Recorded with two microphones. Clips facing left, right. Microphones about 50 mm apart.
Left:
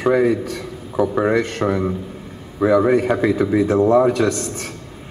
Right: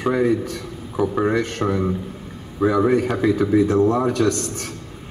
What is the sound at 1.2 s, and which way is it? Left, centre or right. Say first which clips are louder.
Speech: left 2 dB; left.